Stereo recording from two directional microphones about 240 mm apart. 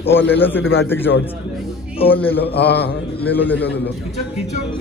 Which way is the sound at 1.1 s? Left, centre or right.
Left.